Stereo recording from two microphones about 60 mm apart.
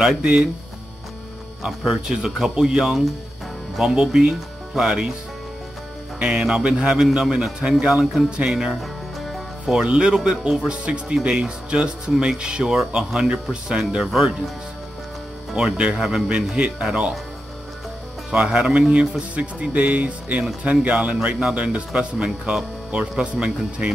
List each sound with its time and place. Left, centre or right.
0.2 s speech: centre
2.0 s speech: centre
6.1 s speech: centre
7.9 s music: centre
8.3 s speech: centre
14.0 s music: centre
15.8 s speech: centre
18.3 s speech: centre
22.4 s speech: centre
22.8 s speech: centre